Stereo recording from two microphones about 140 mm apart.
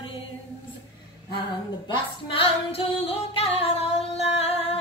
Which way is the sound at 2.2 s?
40° left (ahead or behind).